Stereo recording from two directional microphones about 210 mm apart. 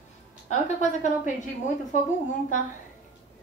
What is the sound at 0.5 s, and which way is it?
Speech, 35° left (ahead or behind).